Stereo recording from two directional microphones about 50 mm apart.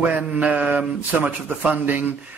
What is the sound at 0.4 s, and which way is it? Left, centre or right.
Speech, right.